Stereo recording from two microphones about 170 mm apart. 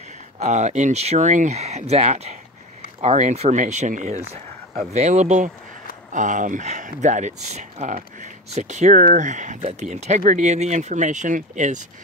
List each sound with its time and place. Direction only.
0.4 s speech: 45° right (ahead or behind)